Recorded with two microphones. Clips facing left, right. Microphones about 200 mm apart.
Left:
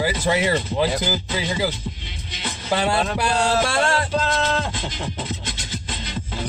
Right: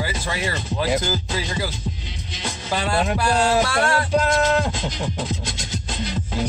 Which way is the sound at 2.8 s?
20° left (ahead or behind).